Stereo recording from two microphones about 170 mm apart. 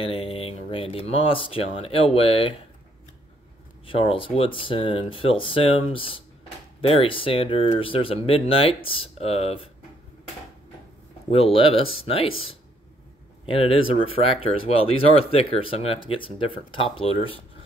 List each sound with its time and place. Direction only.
0.0 s speech: 35° left (ahead or behind)
3.8 s speech: 30° left (ahead or behind)
11.2 s speech: 35° left (ahead or behind)
13.5 s speech: 35° left (ahead or behind)